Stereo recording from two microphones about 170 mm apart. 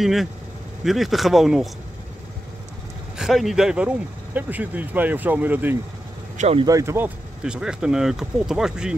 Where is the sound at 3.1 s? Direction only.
Centre (ahead or behind).